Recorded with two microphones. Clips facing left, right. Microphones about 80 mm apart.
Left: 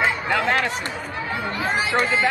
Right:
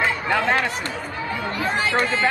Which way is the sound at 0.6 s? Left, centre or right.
Centre.